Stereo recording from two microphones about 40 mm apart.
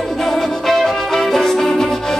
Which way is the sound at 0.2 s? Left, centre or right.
Centre.